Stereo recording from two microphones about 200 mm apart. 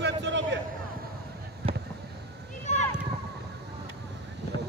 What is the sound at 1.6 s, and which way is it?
Fireworks, 30° right (ahead or behind).